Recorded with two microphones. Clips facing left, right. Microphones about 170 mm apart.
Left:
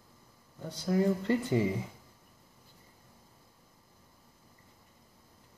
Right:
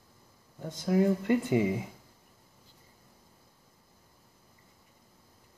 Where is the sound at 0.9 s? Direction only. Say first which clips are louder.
Right 2 dB; 15° right (ahead or behind).